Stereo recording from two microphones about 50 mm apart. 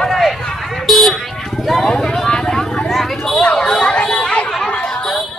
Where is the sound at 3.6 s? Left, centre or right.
Left.